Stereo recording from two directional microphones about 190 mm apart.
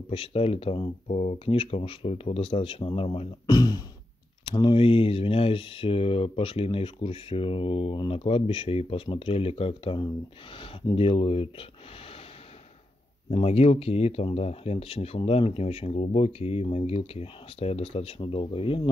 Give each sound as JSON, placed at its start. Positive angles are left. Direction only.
{"t": 0.1, "sound": "speech", "side_deg": 30}
{"t": 13.3, "sound": "speech", "side_deg": 30}